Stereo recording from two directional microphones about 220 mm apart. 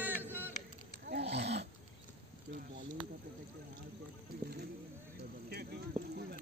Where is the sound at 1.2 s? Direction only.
30° right (ahead or behind).